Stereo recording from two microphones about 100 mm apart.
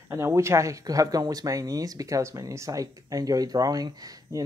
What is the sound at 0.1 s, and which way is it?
Speech, 25° right (ahead or behind).